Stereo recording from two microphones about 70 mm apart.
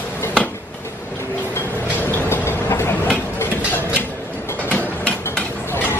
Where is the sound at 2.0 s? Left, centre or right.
Left.